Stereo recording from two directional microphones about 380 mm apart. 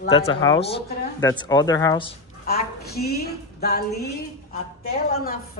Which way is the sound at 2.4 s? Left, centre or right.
Left.